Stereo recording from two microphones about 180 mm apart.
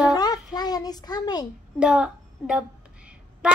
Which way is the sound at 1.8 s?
5° right (ahead or behind).